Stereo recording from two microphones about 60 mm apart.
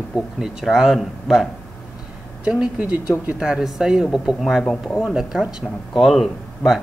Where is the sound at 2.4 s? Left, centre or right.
Centre.